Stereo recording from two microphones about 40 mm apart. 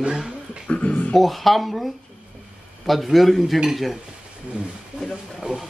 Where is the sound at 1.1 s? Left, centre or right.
Centre.